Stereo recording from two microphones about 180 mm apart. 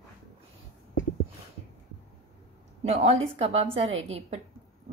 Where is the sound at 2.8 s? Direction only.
35° right (ahead or behind).